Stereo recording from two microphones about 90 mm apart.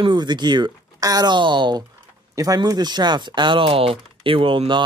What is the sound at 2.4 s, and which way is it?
Speech, 40° right (ahead or behind).